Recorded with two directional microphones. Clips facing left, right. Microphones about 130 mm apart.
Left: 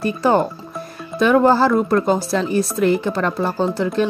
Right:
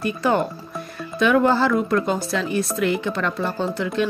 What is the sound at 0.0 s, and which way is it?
Speech, 35° left (ahead or behind).